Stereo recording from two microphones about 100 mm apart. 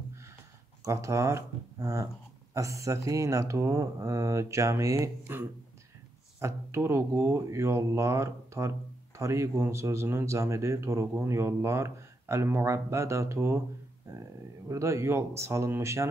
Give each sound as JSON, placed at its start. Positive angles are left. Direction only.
{"t": 0.8, "sound": "speech", "side_deg": -30}